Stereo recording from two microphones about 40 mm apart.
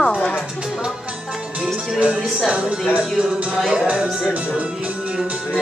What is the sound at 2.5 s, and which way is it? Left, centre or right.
Speech, right.